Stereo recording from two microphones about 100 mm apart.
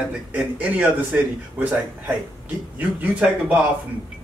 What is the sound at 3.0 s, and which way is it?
Speech, 10° right (ahead or behind).